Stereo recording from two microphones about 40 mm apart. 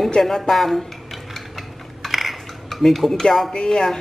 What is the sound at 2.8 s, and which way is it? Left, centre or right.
Speech, centre.